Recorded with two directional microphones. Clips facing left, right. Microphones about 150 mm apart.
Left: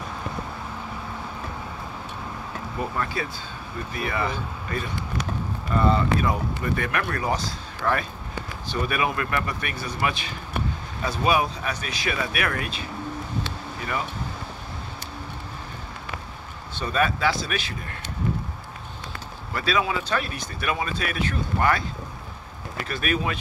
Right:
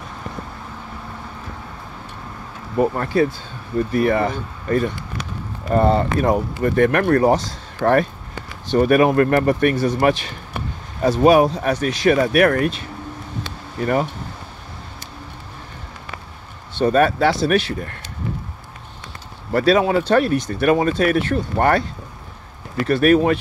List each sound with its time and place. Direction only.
2.8 s speech: 50° right (ahead or behind)
16.7 s speech: 60° right (ahead or behind)
19.5 s speech: 60° right (ahead or behind)
22.8 s speech: 60° right (ahead or behind)